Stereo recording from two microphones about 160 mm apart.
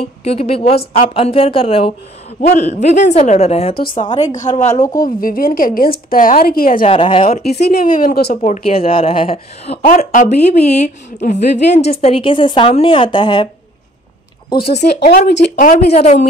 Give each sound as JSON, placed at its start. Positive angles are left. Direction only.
{"t": 0.0, "sound": "a woman's voice", "side_deg": 40}
{"t": 4.9, "sound": "a woman's voice", "side_deg": 60}
{"t": 6.8, "sound": "a woman's voice", "side_deg": 35}
{"t": 7.4, "sound": "a woman's voice", "side_deg": 85}
{"t": 8.4, "sound": "a woman's voice", "side_deg": 35}
{"t": 9.8, "sound": "a woman's voice", "side_deg": 50}
{"t": 12.0, "sound": "a woman's voice", "side_deg": 35}
{"t": 14.7, "sound": "speech", "side_deg": 90}
{"t": 15.9, "sound": "a woman's voice", "side_deg": 45}